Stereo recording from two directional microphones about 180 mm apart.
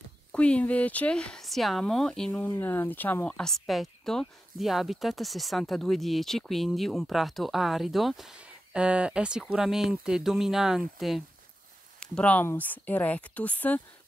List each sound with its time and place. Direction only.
0.3 s speech: 5° left (ahead or behind)